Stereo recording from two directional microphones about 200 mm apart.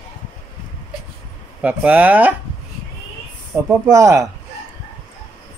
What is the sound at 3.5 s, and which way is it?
Speech, 15° right (ahead or behind).